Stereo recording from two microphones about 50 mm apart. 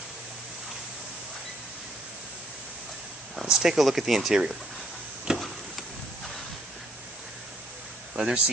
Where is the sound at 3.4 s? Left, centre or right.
Centre.